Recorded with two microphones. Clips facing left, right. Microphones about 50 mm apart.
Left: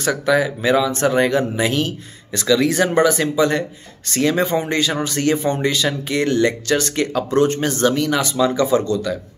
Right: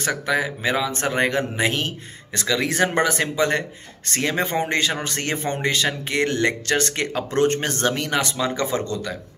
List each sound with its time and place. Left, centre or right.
0.0 s speech: right
0.9 s speech: right
8.4 s speech: right